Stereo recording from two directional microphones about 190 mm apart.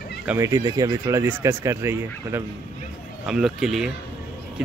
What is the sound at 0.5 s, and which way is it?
Speech, 20° right (ahead or behind).